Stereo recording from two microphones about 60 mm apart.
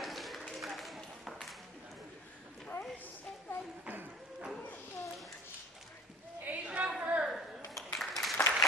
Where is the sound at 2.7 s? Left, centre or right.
Left.